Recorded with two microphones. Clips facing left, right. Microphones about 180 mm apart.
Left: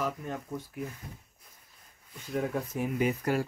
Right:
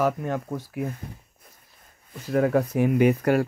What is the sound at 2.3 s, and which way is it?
Speech, 75° right (ahead or behind).